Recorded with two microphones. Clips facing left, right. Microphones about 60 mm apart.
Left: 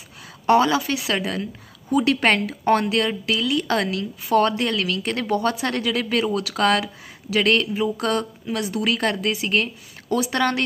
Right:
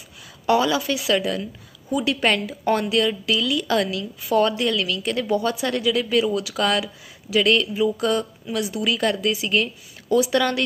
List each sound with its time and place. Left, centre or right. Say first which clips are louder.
0.5 s a woman's voice: left 2 dB; left